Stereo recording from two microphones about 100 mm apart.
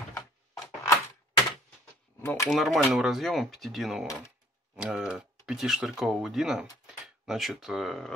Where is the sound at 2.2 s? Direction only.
25° left (ahead or behind).